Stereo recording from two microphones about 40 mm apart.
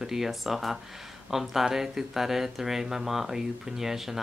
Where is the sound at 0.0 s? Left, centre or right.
Centre.